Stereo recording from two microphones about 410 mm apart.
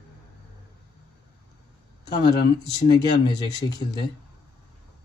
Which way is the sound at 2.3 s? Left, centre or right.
Left.